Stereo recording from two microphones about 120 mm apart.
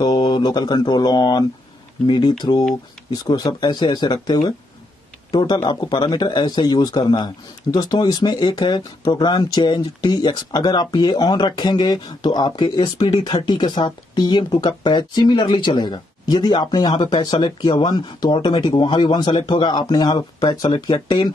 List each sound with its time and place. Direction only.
0.0 s speech: 35° left (ahead or behind)